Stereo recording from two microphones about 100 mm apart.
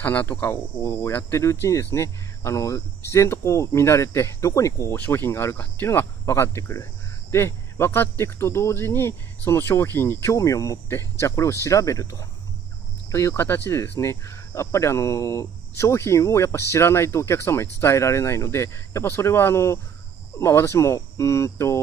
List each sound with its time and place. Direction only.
0.0 s speech: 20° left (ahead or behind)
4.9 s speech: 20° left (ahead or behind)